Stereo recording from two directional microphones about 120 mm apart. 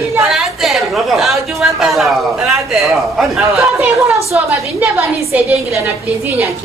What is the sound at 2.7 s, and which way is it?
Speech, 5° right (ahead or behind).